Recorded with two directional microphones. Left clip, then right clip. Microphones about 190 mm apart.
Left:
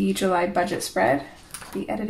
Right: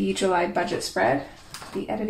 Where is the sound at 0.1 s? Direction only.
30° left (ahead or behind).